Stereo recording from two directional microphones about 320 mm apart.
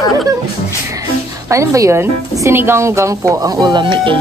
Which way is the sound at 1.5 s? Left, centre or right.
Centre.